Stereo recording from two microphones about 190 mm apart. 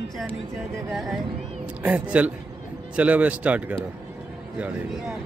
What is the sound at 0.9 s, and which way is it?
A man's voice, centre (ahead or behind).